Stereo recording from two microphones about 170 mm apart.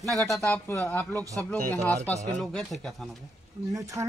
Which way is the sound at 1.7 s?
10° left (ahead or behind).